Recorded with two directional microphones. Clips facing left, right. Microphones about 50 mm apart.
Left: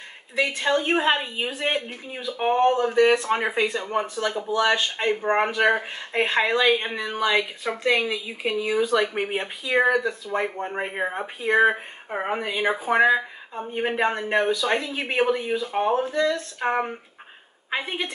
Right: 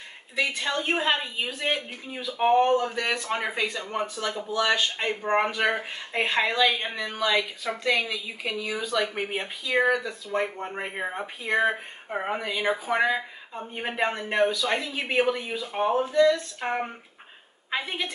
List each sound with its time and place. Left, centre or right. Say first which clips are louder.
0.4 s speech: left 4 dB; centre
4.2 s a woman's voice: left 4 dB; centre